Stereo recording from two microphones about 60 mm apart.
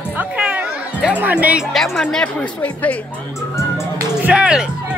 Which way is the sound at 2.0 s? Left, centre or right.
Centre.